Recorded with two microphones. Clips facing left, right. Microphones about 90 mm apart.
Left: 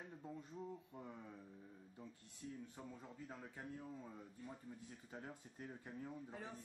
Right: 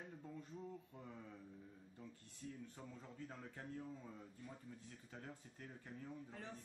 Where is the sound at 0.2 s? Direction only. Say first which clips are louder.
Left 3 dB; 20° left (ahead or behind).